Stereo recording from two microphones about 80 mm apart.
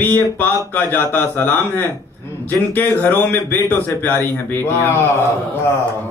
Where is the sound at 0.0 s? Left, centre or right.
Left.